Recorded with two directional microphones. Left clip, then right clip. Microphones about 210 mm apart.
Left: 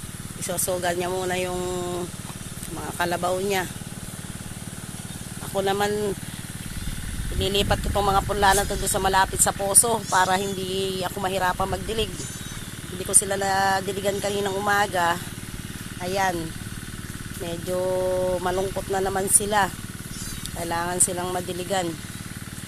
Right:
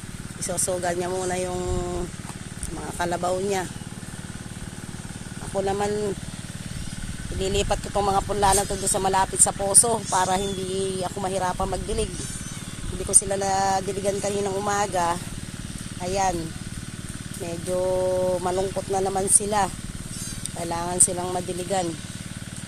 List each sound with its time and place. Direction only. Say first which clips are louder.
0.5 s speech: left 1 dB; centre (ahead or behind)
5.5 s speech: left 1 dB; 5° left (ahead or behind)
7.3 s speech: left 1 dB; centre (ahead or behind)
13.1 s speech: even; centre (ahead or behind)
17.4 s speech: right 1 dB; centre (ahead or behind)